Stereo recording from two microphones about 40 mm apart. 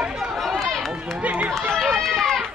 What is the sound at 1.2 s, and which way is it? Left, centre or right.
Run, right.